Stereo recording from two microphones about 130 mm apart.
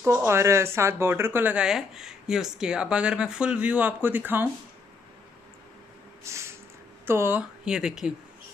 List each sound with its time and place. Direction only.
0.3 s speech: 20° right (ahead or behind)
6.2 s a sound: 20° right (ahead or behind)
7.1 s speech: 15° right (ahead or behind)
7.6 s speech: 5° right (ahead or behind)